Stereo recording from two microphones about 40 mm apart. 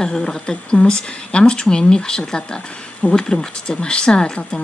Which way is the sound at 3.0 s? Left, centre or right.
Left.